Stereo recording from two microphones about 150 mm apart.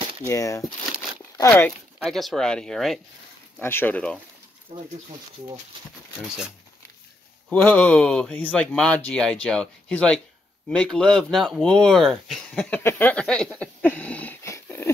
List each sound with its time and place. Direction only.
0.3 s speech: 20° left (ahead or behind)
2.0 s speech: centre (ahead or behind)
3.6 s speech: 15° left (ahead or behind)
4.7 s speech: 45° right (ahead or behind)
6.2 s speech: 5° right (ahead or behind)
7.6 s speech: 10° left (ahead or behind)